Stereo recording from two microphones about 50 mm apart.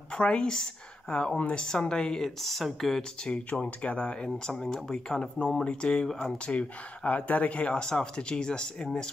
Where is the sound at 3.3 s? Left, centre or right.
Left.